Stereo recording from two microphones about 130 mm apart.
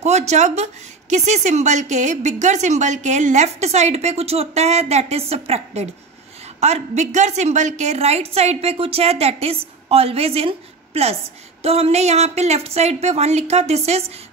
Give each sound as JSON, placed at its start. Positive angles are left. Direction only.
{"t": 0.0, "sound": "a woman's voice", "side_deg": -60}
{"t": 6.6, "sound": "a woman's voice", "side_deg": -60}